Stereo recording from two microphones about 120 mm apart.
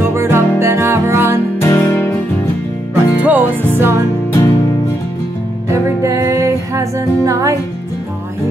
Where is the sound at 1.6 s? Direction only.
20° left (ahead or behind).